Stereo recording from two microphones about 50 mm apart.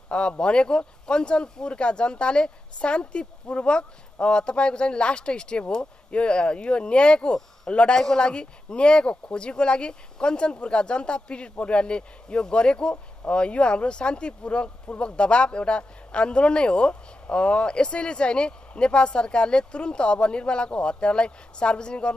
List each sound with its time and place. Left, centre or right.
0.1 s speech: left